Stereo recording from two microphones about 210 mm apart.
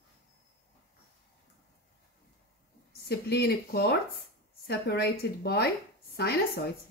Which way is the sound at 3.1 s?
50° left (ahead or behind).